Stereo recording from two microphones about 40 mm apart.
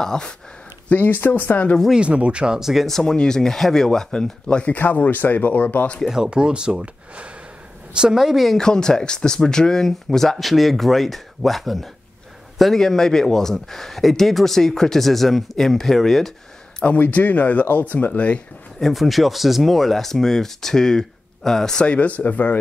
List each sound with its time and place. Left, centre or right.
0.0 s speech: centre
0.8 s speech: left
2.0 s speech: right
2.6 s speech: centre
2.9 s speech: centre
4.6 s speech: left
6.0 s speech: centre
6.3 s a woman's voice: right
8.2 s speech: centre
8.5 s a man's voice: centre
12.8 s speech: centre
16.8 s speech: left
18.8 s speech: centre
21.8 s speech: left